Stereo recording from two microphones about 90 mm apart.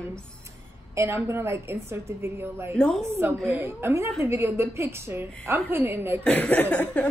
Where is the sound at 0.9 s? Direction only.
30° right (ahead or behind).